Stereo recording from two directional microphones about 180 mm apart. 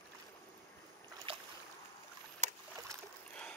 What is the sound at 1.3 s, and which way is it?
Boat, 30° right (ahead or behind).